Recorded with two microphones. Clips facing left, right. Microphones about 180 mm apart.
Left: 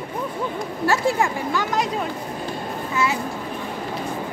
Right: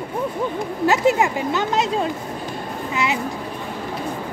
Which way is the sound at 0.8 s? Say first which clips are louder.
Right 3 dB; 20° right (ahead or behind).